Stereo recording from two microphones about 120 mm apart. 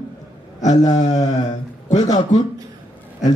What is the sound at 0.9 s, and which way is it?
Mantra, 70° left (ahead or behind).